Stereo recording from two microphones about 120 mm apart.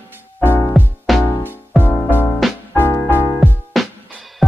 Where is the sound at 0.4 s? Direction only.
20° left (ahead or behind).